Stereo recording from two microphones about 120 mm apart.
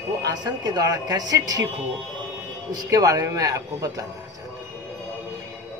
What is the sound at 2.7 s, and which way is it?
A man's voice, 30° right (ahead or behind).